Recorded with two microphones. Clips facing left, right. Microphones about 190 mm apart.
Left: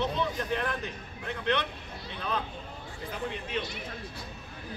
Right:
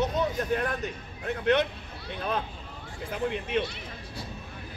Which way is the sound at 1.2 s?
50° right (ahead or behind).